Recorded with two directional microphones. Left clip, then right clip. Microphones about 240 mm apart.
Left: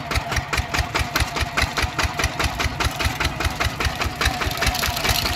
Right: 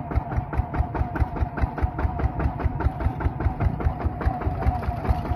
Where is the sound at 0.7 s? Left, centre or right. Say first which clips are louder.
Left 7 dB; centre.